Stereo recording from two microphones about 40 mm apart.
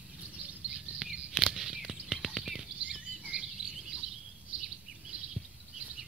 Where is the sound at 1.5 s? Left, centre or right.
Centre.